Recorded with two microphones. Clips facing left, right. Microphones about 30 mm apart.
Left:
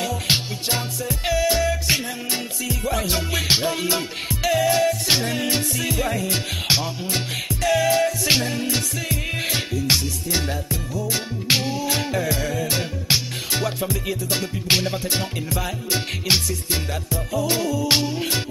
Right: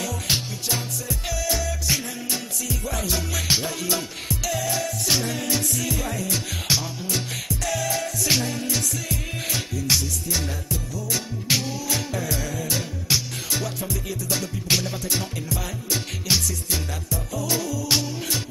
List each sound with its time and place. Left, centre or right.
0.0 s music: left